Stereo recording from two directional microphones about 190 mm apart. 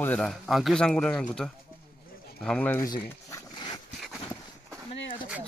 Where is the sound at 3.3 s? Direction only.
20° left (ahead or behind).